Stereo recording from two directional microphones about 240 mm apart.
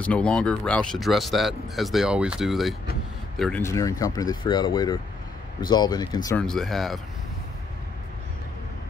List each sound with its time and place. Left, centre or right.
0.0 s speech: centre
6.4 s speech: centre